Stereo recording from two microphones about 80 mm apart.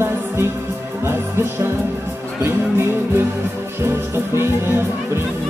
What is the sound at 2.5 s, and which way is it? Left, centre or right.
Music, right.